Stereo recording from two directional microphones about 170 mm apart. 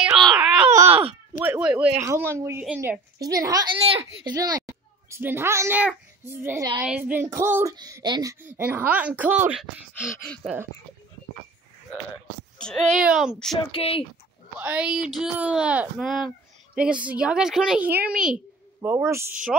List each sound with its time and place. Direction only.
0.0 s a sound: centre (ahead or behind)
0.7 s groan: 10° right (ahead or behind)
1.4 s speech: 10° right (ahead or behind)
3.7 s speech: 30° right (ahead or behind); by 7.7 s 15° right (ahead or behind)
7.7 s speech: 25° right (ahead or behind); by 9.7 s 10° right (ahead or behind)
10.2 s speech: 5° left (ahead or behind)
12.5 s a child's voice: 5° left (ahead or behind)
13.7 s speech: 35° left (ahead or behind)
14.6 s a woman's voice: 5° right (ahead or behind)